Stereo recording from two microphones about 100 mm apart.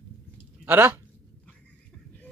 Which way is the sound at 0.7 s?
20° right (ahead or behind).